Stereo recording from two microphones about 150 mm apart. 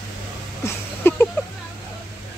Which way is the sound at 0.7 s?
15° left (ahead or behind).